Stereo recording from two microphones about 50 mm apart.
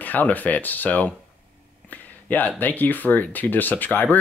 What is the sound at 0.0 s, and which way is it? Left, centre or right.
A man's voice, left.